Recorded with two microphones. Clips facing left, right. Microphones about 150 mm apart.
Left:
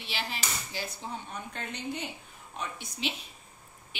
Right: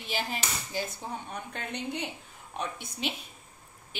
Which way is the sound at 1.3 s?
65° right (ahead or behind).